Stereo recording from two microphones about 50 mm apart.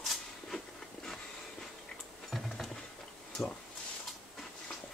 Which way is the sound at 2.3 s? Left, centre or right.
Centre.